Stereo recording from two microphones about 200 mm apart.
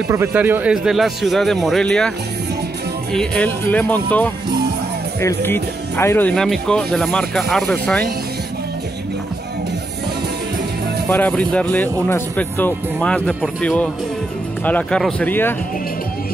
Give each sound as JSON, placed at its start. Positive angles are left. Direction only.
{"t": 0.1, "sound": "speech", "side_deg": -10}
{"t": 5.4, "sound": "speech", "side_deg": 10}
{"t": 11.1, "sound": "speech", "side_deg": 10}